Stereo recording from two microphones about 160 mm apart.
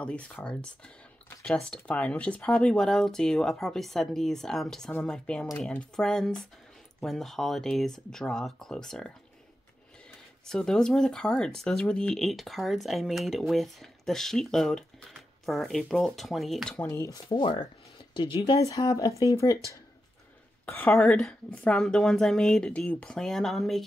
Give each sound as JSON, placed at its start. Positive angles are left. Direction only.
{"t": 0.0, "sound": "speech", "side_deg": 5}
{"t": 10.4, "sound": "speech", "side_deg": 5}
{"t": 16.7, "sound": "speech", "side_deg": 15}
{"t": 17.4, "sound": "speech", "side_deg": 30}
{"t": 20.6, "sound": "speech", "side_deg": 10}